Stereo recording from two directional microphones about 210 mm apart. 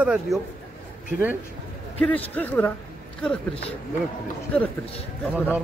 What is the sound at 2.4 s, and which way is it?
Speech, 10° left (ahead or behind).